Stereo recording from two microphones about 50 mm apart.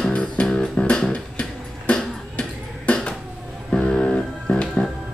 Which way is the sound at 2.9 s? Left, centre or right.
Left.